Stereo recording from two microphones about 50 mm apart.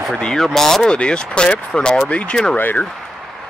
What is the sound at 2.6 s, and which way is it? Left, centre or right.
Speech, left.